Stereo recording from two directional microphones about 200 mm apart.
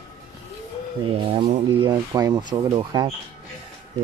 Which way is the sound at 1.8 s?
20° right (ahead or behind).